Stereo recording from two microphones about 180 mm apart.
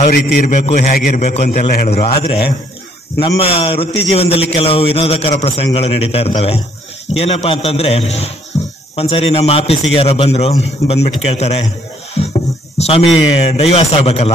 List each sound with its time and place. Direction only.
0.1 s a man's voice: 65° left (ahead or behind)
0.5 s a man's voice: 45° left (ahead or behind)
8.5 s cricket: 15° left (ahead or behind)
8.9 s a man's voice: 35° left (ahead or behind)
12.2 s music: 35° left (ahead or behind)
12.7 s a man's voice: 35° left (ahead or behind)